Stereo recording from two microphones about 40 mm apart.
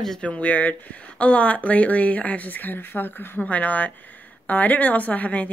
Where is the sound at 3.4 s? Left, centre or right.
Left.